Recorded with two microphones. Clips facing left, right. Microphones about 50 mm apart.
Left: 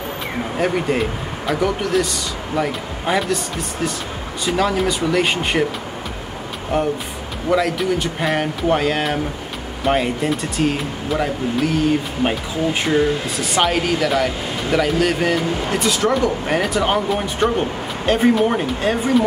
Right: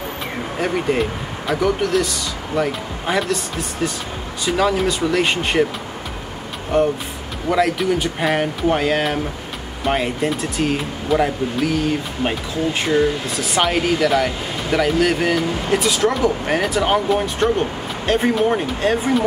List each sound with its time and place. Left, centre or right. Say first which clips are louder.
0.6 s speech: even; centre
4.5 s speech: right 1 dB; centre
6.7 s speech: right 3 dB; centre
12.8 s speech: right 1 dB; centre